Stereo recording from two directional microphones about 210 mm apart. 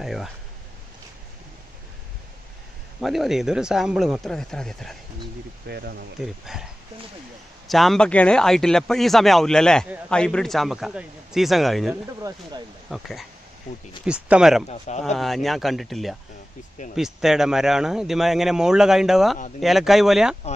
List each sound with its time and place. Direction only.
0.0 s speech: centre (ahead or behind)
3.0 s speech: centre (ahead or behind)
5.7 s speech: 50° right (ahead or behind)
6.2 s speech: centre (ahead or behind)
12.2 s speech: 15° right (ahead or behind)
12.9 s speech: 5° right (ahead or behind)
14.7 s speech: 30° left (ahead or behind)
15.1 s speech: centre (ahead or behind)